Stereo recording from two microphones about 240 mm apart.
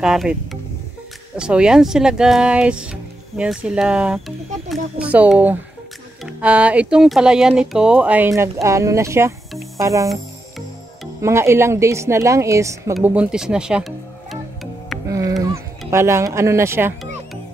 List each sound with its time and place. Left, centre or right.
0.0 s a woman's voice: centre
9.8 s music: centre
11.1 s a woman's voice: centre
12.9 s music: centre
15.0 s a woman's voice: centre